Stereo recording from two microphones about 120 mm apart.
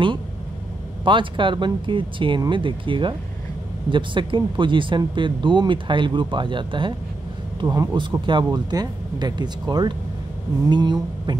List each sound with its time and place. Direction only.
1.0 s speech: 45° right (ahead or behind)
7.6 s speech: 30° right (ahead or behind)
7.9 s speech: 40° right (ahead or behind)